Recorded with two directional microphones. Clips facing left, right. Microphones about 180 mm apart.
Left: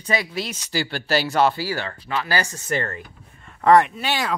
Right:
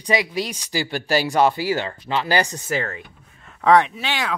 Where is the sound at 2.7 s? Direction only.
Centre (ahead or behind).